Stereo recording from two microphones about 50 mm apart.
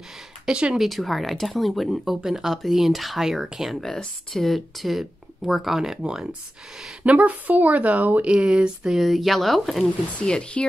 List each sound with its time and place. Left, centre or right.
0.5 s a sound: right
0.7 s speech: centre
2.2 s speech: centre
3.8 s speech: centre
7.0 s speech: right
8.3 s a sound: centre
8.9 s speech: centre
10.2 s speech: centre